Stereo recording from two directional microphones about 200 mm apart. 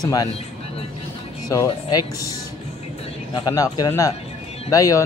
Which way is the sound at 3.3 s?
20° left (ahead or behind).